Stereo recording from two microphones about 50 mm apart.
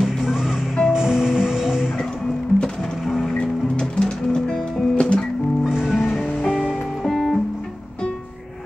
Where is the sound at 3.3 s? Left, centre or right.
Centre.